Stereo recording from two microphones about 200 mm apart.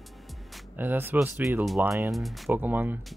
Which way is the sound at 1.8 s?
15° right (ahead or behind).